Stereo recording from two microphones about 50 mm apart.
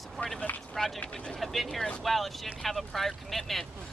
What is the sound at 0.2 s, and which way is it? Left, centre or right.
Speech, centre.